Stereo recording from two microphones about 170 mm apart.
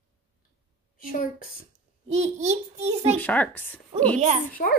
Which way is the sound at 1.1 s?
55° left (ahead or behind).